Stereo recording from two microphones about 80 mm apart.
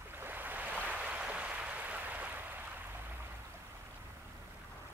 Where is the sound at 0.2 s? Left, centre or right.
Right.